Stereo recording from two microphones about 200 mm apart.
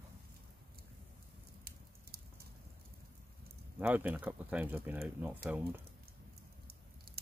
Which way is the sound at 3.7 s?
10° right (ahead or behind).